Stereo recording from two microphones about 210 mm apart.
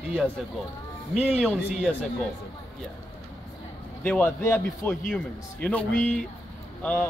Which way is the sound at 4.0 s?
5° left (ahead or behind).